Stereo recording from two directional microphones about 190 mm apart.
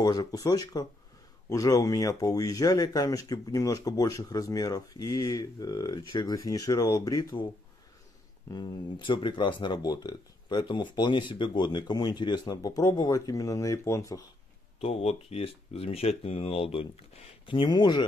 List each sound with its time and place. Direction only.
0.0 s speech: 20° left (ahead or behind)
8.5 s speech: 20° left (ahead or behind)
14.8 s speech: 35° left (ahead or behind)